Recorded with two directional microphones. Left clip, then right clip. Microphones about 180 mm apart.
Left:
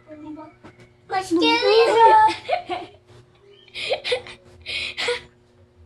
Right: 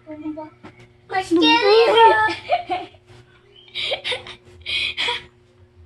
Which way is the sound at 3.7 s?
35° left (ahead or behind).